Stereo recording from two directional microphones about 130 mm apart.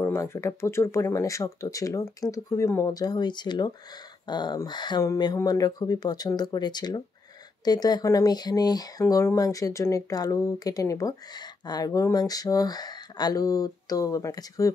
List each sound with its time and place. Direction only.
0.0 s speech: 20° left (ahead or behind)